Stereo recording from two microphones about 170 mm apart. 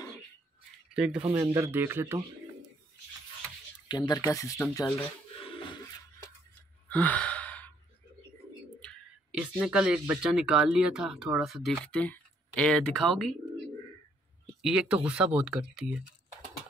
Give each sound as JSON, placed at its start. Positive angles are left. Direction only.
{"t": 0.9, "sound": "speech", "side_deg": -5}
{"t": 1.2, "sound": "speech", "side_deg": -20}
{"t": 3.9, "sound": "speech", "side_deg": 25}
{"t": 5.4, "sound": "a sound", "side_deg": 30}
{"t": 6.9, "sound": "gasp", "side_deg": 10}
{"t": 9.4, "sound": "speech", "side_deg": -5}
{"t": 14.6, "sound": "speech", "side_deg": -5}